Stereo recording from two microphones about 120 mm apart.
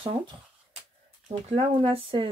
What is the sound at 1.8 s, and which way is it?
Speech, 45° right (ahead or behind).